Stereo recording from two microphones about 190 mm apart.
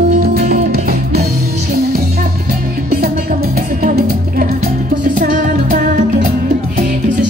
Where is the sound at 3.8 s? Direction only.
50° right (ahead or behind).